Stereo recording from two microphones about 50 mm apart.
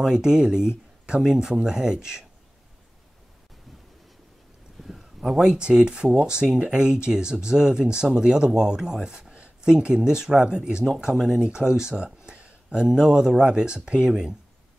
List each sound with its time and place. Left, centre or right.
0.0 s speech: centre
4.8 s speech: centre